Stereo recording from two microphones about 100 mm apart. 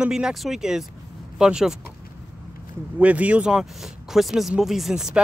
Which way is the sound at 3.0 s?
15° right (ahead or behind).